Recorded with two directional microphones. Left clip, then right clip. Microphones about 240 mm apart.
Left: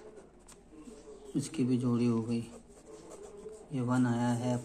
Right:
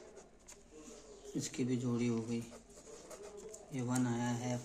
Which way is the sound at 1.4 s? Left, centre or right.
Centre.